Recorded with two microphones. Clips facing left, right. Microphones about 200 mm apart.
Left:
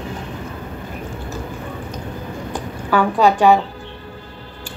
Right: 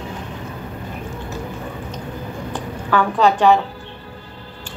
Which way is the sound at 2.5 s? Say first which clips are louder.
Left 1 dB; 10° left (ahead or behind).